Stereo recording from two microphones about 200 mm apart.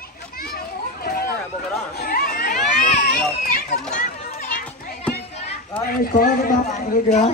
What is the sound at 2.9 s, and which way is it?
Children playing, 50° left (ahead or behind).